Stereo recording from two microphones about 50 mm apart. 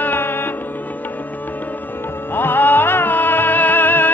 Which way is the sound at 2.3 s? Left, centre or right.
Left.